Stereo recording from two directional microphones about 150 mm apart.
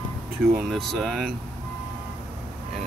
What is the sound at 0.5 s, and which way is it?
Speech, centre (ahead or behind).